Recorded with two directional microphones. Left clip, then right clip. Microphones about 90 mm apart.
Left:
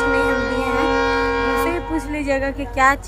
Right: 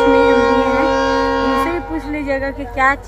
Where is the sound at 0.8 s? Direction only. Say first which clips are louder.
Right 3 dB; 50° right (ahead or behind).